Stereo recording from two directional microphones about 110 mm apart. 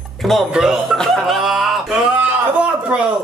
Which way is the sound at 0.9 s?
5° left (ahead or behind).